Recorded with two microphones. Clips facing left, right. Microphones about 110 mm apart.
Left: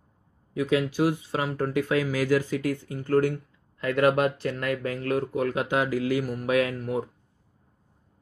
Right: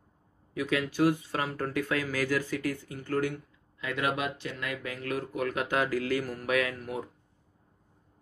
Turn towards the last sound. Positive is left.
turn(degrees=30)  # may be behind; listen again after turning